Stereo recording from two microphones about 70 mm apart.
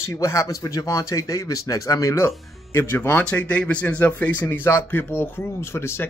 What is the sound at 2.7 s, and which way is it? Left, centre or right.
Speech, left.